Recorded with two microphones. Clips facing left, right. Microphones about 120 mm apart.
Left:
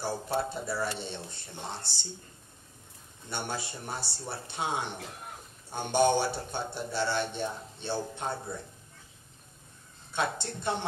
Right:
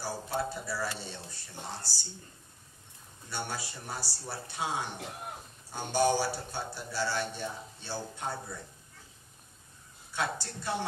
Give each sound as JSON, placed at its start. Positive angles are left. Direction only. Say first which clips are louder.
{"t": 0.0, "sound": "a man's voice", "louder": "left 3 dB", "side_deg": 25}
{"t": 3.3, "sound": "a man's voice", "louder": "left 2 dB", "side_deg": 25}
{"t": 10.1, "sound": "a man's voice", "louder": "left 2 dB", "side_deg": 25}